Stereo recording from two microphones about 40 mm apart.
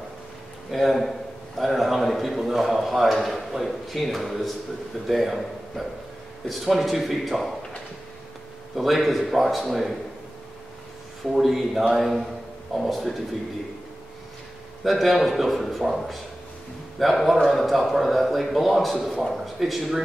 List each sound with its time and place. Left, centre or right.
0.7 s a man's voice: centre
1.6 s a sound: centre
5.0 s a man's voice: centre
8.7 s a man's voice: centre
11.3 s a man's voice: centre
14.8 s a man's voice: centre